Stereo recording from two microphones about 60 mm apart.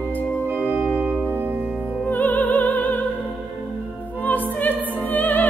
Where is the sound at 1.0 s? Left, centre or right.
Right.